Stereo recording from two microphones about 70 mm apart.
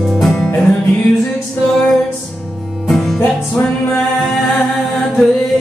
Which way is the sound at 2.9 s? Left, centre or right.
Centre.